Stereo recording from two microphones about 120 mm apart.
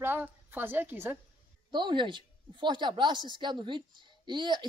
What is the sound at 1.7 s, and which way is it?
A man's voice, 40° right (ahead or behind).